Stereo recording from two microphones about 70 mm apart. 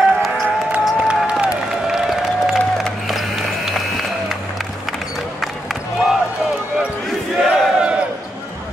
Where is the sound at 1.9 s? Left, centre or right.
Centre.